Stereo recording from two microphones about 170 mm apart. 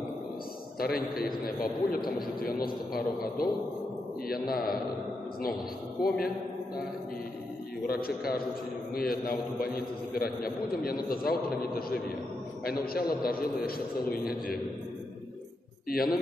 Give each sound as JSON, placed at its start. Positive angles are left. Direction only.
{"t": 0.7, "sound": "a man's voice", "side_deg": 60}
{"t": 6.0, "sound": "a man's voice", "side_deg": 60}
{"t": 7.8, "sound": "a man's voice", "side_deg": 65}
{"t": 15.9, "sound": "a man's voice", "side_deg": 60}